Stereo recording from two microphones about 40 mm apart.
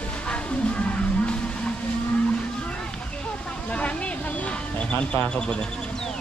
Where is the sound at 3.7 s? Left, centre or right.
Left.